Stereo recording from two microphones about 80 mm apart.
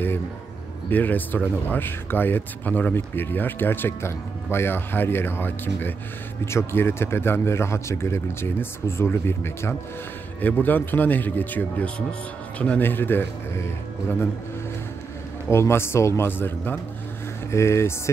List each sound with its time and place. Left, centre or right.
0.8 s speech: left
15.4 s speech: left